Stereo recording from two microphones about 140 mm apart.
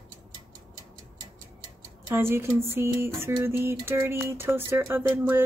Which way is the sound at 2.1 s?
15° right (ahead or behind).